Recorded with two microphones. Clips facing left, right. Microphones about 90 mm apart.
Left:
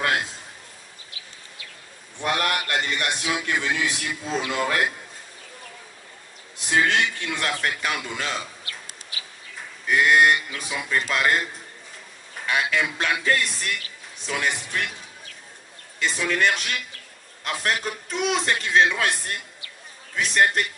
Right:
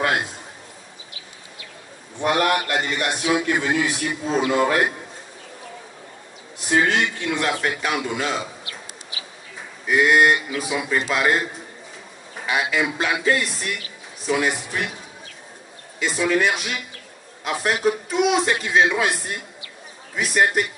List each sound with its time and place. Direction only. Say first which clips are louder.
0.0 s a sound: right 2 dB; 15° right (ahead or behind)
2.2 s a man's voice: right 5 dB; 20° right (ahead or behind)
6.7 s a man's voice: right 2 dB; 15° right (ahead or behind)
9.6 s a man's voice: right 2 dB; 5° right (ahead or behind)
16.0 s a man's voice: right 3 dB; 5° right (ahead or behind)